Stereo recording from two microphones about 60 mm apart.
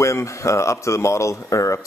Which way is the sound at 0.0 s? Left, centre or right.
Left.